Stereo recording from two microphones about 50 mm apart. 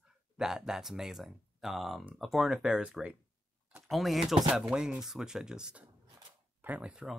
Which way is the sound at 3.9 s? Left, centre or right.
Centre.